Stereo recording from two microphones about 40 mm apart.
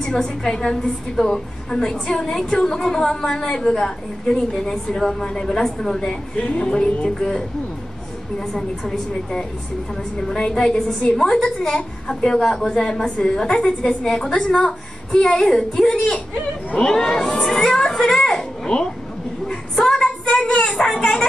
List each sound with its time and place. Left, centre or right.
0.0 s a woman's voice: centre
6.3 s a woman's voice: left
10.3 s a woman's voice: centre
11.1 s a woman's voice: centre
19.4 s a sound: centre